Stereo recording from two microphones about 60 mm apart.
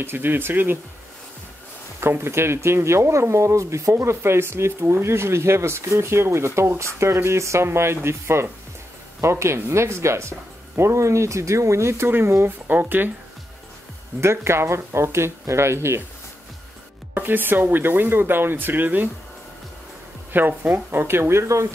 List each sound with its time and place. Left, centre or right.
0.0 s speech: right
2.0 s speech: right
14.2 s speech: right
17.1 s speech: right
20.3 s speech: right